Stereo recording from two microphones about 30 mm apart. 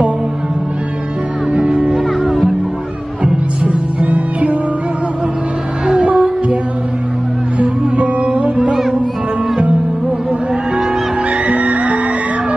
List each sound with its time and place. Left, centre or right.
1.5 s music: right
2.0 s music: centre
5.9 s music: right
7.9 s music: right
11.2 s music: right